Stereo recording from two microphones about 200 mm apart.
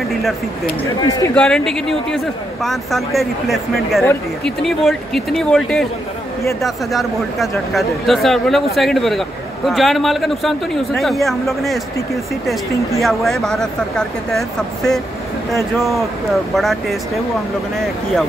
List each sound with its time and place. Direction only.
1.0 s speech: 15° left (ahead or behind)
1.3 s speech: 5° left (ahead or behind)
13.0 s speech: centre (ahead or behind)